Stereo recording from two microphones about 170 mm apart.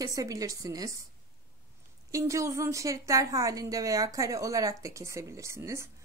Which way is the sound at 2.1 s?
20° right (ahead or behind).